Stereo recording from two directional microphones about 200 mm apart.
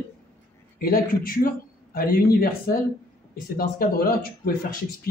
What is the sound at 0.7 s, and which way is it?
Speech, 45° left (ahead or behind).